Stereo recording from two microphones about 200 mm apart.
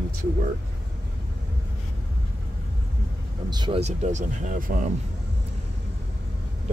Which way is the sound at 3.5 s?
20° right (ahead or behind).